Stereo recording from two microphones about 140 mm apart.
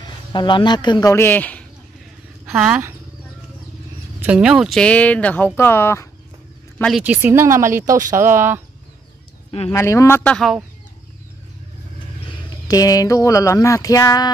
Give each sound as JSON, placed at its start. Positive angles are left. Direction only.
{"t": 0.0, "sound": "a man's voice", "side_deg": 30}
{"t": 1.1, "sound": "speech", "side_deg": 15}
{"t": 2.5, "sound": "speech", "side_deg": -5}
{"t": 4.2, "sound": "speech", "side_deg": -10}
{"t": 7.0, "sound": "speech", "side_deg": -10}
{"t": 9.7, "sound": "speech", "side_deg": 20}
{"t": 12.3, "sound": "speech", "side_deg": 30}